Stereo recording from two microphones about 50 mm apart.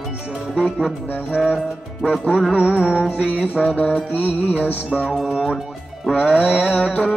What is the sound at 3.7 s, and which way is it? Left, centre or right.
Music, left.